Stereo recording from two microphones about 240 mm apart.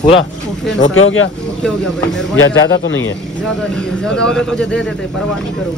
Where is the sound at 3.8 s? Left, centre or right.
Centre.